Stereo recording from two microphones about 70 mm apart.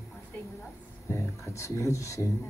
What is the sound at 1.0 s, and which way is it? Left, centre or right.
Speech, left.